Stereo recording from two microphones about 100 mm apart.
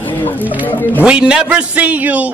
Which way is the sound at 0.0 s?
20° left (ahead or behind).